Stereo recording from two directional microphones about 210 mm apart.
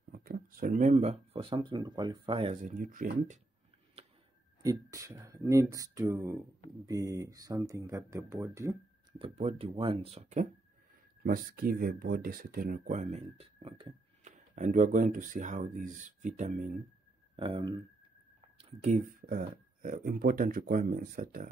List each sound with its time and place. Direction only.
0.1 s speech: 45° right (ahead or behind); by 2.5 s 25° right (ahead or behind)
2.6 s speech: 40° right (ahead or behind)
4.6 s speech: 15° right (ahead or behind)
9.2 s speech: 30° right (ahead or behind)
17.4 s speech: 25° right (ahead or behind); by 21.5 s 40° right (ahead or behind)